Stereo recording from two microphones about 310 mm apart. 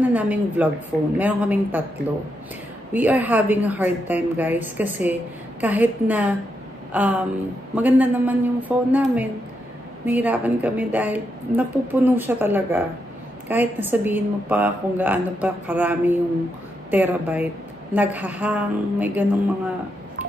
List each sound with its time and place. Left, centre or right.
0.0 s a woman's voice: centre
2.9 s a woman's voice: centre